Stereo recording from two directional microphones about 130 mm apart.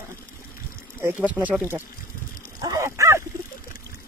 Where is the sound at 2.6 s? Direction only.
25° right (ahead or behind).